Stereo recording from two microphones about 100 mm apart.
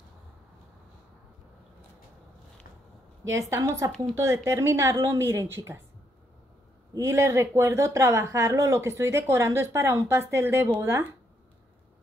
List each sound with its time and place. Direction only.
3.3 s speech: 30° right (ahead or behind)
6.9 s speech: 30° right (ahead or behind)